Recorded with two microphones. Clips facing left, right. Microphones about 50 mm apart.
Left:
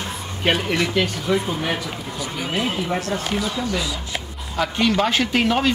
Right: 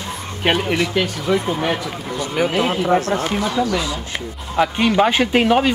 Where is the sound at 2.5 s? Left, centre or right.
Right.